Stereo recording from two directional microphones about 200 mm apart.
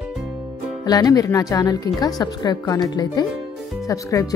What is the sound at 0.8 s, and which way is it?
Speech, 20° left (ahead or behind).